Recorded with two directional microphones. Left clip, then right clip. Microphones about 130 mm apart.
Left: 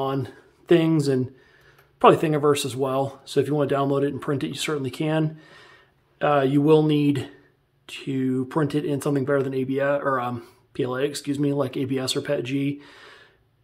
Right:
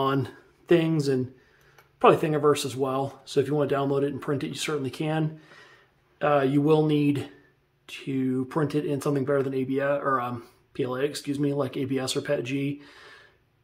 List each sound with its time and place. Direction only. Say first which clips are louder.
0.7 s speech: left 3 dB; 30° left (ahead or behind)